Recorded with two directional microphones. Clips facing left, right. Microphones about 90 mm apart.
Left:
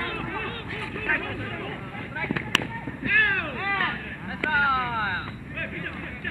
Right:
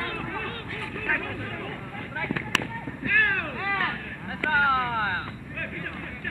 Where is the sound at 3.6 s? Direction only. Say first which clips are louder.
Even; 10° right (ahead or behind).